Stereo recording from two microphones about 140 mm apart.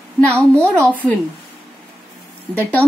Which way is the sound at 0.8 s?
10° left (ahead or behind).